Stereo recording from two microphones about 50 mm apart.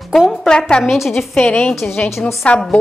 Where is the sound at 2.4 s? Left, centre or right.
Left.